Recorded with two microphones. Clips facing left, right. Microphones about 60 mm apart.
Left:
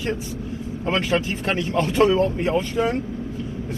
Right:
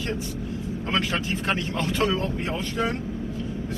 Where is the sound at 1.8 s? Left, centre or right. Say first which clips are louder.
Left 10 dB; left.